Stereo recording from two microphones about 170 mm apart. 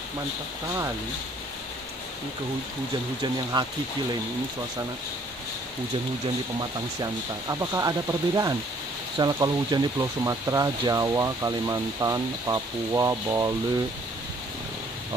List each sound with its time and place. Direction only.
3.5 s speech: 25° right (ahead or behind)
6.6 s speech: 20° right (ahead or behind)